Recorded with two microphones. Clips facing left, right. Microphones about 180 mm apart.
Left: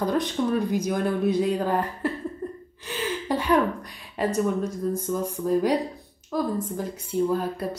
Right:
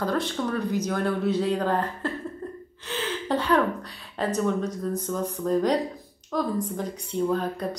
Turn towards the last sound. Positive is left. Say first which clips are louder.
# even
turn(degrees=5)  # may be behind; listen again after turning